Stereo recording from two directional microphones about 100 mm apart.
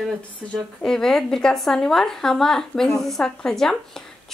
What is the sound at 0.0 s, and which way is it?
A woman's voice, 5° left (ahead or behind).